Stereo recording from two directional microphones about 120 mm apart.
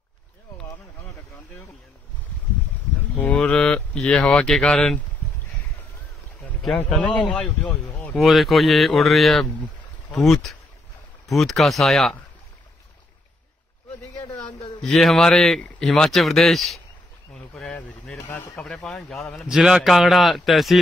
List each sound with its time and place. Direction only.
3.2 s speech: 10° left (ahead or behind)
6.8 s speech: 10° left (ahead or behind)
8.2 s speech: centre (ahead or behind)
14.8 s speech: centre (ahead or behind)
17.3 s a sound: 5° left (ahead or behind)
18.1 s speech: 20° left (ahead or behind)
18.6 s speech: 5° left (ahead or behind)